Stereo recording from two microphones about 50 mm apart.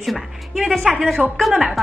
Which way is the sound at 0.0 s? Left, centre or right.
Centre.